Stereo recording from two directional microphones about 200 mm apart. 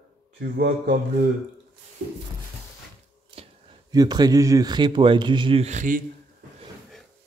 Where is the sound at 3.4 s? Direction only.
30° right (ahead or behind).